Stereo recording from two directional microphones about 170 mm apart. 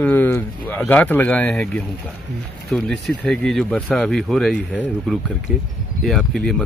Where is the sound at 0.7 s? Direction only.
10° left (ahead or behind).